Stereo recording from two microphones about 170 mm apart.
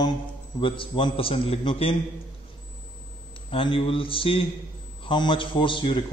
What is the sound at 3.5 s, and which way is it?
A man's voice, 30° left (ahead or behind).